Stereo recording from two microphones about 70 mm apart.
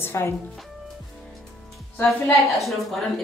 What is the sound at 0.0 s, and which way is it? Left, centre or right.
Speech, left.